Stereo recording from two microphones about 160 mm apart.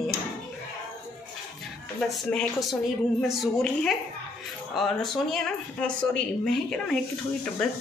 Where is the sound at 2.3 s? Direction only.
Centre (ahead or behind).